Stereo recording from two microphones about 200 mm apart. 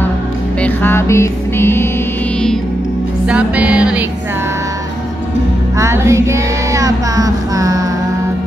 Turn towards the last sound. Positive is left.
turn(degrees=-15)  # may be behind; listen again after turning